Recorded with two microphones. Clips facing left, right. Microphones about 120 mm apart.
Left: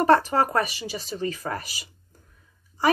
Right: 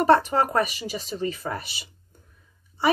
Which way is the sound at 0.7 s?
35° left (ahead or behind).